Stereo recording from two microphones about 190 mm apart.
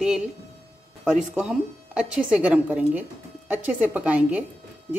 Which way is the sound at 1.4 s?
5° right (ahead or behind).